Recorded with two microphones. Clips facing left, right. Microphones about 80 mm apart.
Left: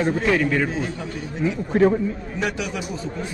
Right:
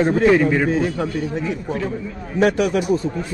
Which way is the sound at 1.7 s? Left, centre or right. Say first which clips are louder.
Left 11 dB; left.